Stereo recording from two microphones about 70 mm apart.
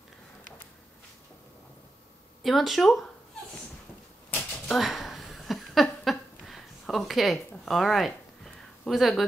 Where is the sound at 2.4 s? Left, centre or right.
Centre.